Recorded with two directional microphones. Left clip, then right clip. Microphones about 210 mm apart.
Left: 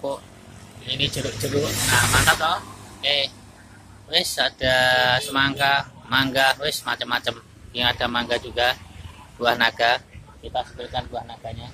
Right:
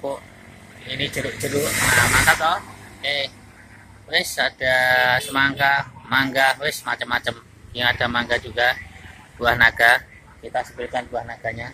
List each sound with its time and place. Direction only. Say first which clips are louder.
0.8 s speech: even; 5° left (ahead or behind)
10.5 s speech: right 2 dB; 20° right (ahead or behind)